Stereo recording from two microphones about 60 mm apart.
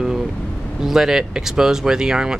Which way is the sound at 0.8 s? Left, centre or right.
Centre.